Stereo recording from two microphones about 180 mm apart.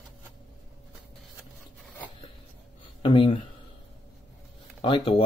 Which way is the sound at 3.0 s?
30° left (ahead or behind).